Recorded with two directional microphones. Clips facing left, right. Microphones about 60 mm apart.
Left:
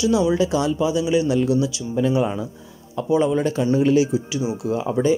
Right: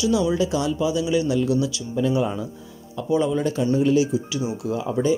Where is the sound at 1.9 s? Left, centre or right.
Left.